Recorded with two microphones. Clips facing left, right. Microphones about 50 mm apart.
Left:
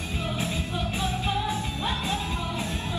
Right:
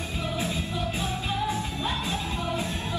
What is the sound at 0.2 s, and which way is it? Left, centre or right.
Music, left.